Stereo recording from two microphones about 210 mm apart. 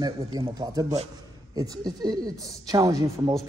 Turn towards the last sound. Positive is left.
turn(degrees=-15)  # may be behind; listen again after turning